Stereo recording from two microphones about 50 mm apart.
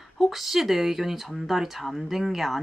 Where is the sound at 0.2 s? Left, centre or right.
Centre.